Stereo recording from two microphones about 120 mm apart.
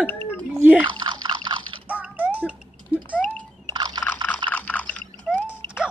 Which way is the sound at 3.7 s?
35° right (ahead or behind).